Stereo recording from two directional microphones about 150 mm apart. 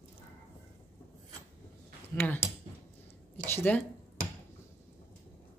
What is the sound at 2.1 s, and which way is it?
Speech, 10° left (ahead or behind).